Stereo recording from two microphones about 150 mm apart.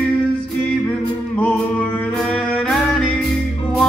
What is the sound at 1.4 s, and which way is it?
Music, 10° left (ahead or behind).